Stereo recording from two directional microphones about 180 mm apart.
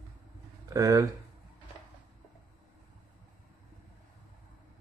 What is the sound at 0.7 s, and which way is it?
Speech, 20° right (ahead or behind).